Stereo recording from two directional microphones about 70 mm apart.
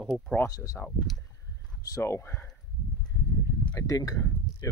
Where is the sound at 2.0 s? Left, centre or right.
Left.